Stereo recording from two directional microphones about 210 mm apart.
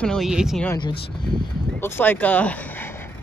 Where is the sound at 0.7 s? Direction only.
20° left (ahead or behind).